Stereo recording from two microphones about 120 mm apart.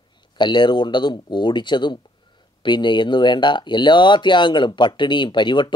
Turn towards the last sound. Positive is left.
turn(degrees=40)  # may be behind; listen again after turning